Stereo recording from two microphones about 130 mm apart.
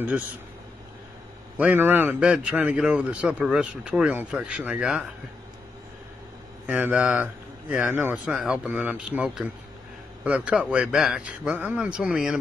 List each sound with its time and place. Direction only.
1.6 s a man's voice: 15° right (ahead or behind)
6.6 s a man's voice: 15° right (ahead or behind)
8.3 s a man's voice: 5° right (ahead or behind)